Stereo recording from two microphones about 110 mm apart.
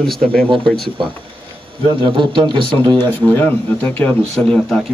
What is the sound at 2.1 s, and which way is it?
Speech, 50° right (ahead or behind).